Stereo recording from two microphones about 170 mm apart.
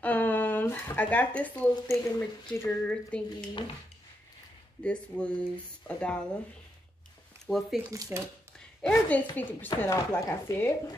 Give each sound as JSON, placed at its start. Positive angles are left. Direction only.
{"t": 0.0, "sound": "speech", "side_deg": 10}
{"t": 4.8, "sound": "speech", "side_deg": 5}
{"t": 7.4, "sound": "speech", "side_deg": 0}
{"t": 7.9, "sound": "speech", "side_deg": -20}
{"t": 8.5, "sound": "speech", "side_deg": 10}